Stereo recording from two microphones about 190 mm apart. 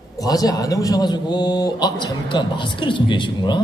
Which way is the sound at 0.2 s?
20° left (ahead or behind).